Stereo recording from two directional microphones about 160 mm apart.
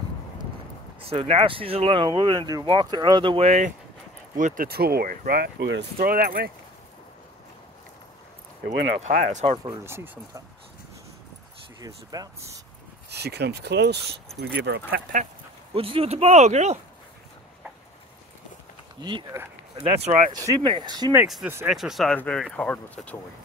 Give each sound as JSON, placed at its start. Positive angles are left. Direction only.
{"t": 1.0, "sound": "speech", "side_deg": -40}
{"t": 4.6, "sound": "speech", "side_deg": -75}
{"t": 8.6, "sound": "speech", "side_deg": -50}
{"t": 9.8, "sound": "speech", "side_deg": -15}
{"t": 11.8, "sound": "speech", "side_deg": -25}
{"t": 13.1, "sound": "speech", "side_deg": -90}
{"t": 15.7, "sound": "speech", "side_deg": -35}
{"t": 18.9, "sound": "speech", "side_deg": -30}
{"t": 20.1, "sound": "speech", "side_deg": -50}
{"t": 20.3, "sound": "speech", "side_deg": -25}
{"t": 21.6, "sound": "speech", "side_deg": 0}